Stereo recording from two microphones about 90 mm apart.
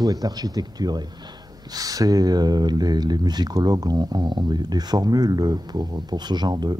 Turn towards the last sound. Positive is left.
turn(degrees=-50)  # may be behind; listen again after turning